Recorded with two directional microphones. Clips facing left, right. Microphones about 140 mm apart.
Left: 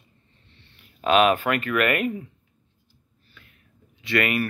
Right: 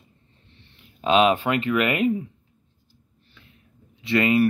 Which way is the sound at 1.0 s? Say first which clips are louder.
Even; 25° right (ahead or behind).